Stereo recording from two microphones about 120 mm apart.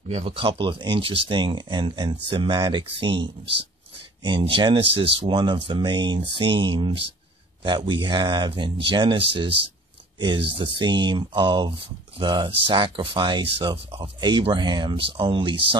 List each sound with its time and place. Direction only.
0.1 s speech: 55° right (ahead or behind)